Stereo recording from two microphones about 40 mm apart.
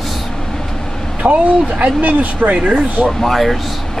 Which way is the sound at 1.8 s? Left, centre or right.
Right.